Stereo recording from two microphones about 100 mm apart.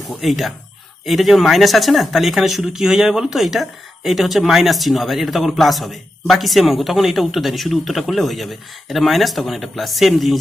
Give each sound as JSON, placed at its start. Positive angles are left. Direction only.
{"t": 0.1, "sound": "speech", "side_deg": 0}